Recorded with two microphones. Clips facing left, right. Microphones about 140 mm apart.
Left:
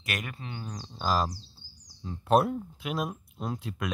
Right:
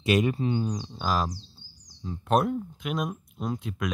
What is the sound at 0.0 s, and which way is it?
Speech, 25° right (ahead or behind).